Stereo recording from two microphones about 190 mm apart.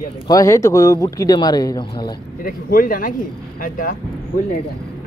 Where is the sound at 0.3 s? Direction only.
15° left (ahead or behind).